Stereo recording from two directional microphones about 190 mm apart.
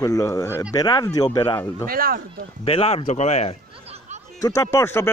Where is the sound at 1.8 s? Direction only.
50° right (ahead or behind).